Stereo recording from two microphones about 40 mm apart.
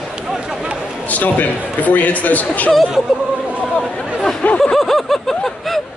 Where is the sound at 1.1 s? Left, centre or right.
Left.